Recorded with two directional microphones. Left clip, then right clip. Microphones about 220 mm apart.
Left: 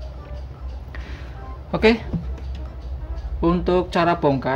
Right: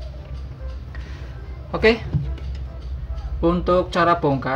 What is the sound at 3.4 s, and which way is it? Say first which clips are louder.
Speech: right 1 dB; 30° left (ahead or behind).